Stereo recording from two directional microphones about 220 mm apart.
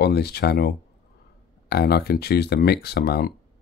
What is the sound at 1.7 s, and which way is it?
Speech, 45° left (ahead or behind).